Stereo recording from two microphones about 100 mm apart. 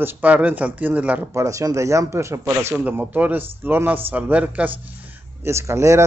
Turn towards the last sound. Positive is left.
turn(degrees=-30)  # may be behind; listen again after turning